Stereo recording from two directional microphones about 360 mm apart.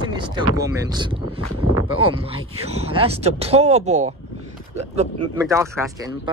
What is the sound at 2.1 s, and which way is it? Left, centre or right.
Speech, centre.